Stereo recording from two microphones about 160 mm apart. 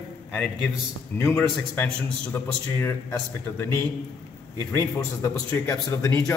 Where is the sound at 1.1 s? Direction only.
15° left (ahead or behind).